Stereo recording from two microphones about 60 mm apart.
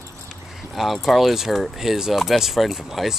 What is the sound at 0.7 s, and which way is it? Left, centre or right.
Speech, centre.